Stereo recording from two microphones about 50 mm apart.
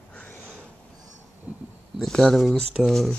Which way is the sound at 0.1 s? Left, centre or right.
Left.